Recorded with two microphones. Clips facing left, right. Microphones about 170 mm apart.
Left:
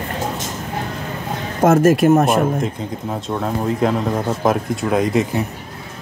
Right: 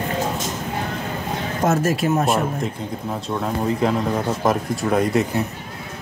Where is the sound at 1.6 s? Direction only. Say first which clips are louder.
Left 8 dB; 50° left (ahead or behind).